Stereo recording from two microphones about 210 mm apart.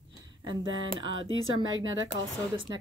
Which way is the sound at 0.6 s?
65° right (ahead or behind).